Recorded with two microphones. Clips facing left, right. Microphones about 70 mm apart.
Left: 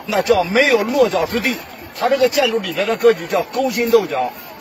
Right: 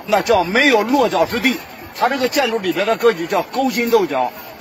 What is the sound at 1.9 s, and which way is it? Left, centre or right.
Speech, right.